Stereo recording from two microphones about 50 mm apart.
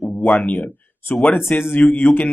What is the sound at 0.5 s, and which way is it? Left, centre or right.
Speech, left.